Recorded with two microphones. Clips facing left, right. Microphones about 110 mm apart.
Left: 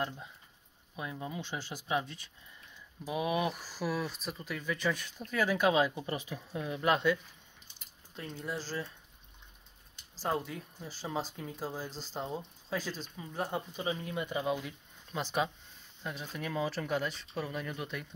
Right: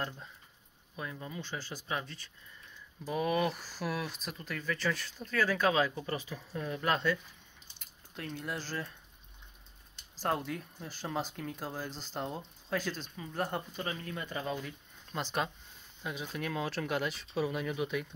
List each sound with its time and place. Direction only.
0.9 s speech: 15° left (ahead or behind)
7.8 s speech: centre (ahead or behind)
10.2 s speech: 5° left (ahead or behind)